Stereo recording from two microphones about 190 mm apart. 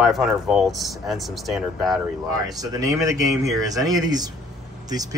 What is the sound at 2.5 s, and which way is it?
A man's voice, 20° right (ahead or behind).